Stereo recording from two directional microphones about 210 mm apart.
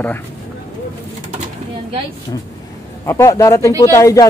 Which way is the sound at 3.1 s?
15° left (ahead or behind).